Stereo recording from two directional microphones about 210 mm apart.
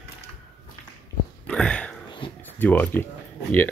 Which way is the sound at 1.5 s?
5° left (ahead or behind).